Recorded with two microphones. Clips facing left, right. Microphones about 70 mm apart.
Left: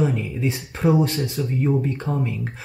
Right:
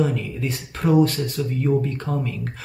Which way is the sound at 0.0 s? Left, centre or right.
Left.